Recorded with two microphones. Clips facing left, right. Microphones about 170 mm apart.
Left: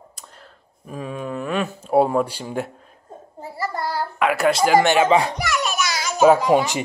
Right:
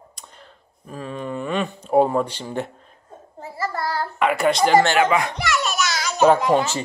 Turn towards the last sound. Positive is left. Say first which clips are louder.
# left 1 dB
turn(degrees=5)  # may be behind; listen again after turning